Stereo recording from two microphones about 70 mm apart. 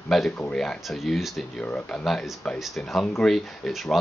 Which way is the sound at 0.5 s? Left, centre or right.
Centre.